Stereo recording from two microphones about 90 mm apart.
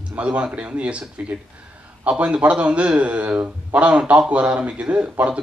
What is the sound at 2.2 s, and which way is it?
A man's voice, 15° right (ahead or behind).